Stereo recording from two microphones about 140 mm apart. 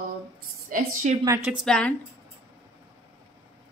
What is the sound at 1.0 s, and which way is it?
Speech, 60° right (ahead or behind).